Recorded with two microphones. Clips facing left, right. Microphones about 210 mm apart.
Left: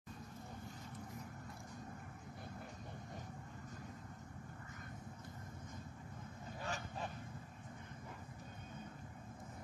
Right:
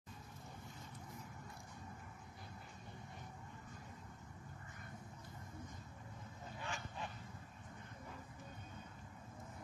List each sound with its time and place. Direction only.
6.6 s goose: 40° left (ahead or behind)